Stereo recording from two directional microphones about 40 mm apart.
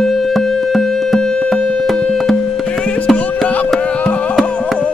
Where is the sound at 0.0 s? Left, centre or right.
Centre.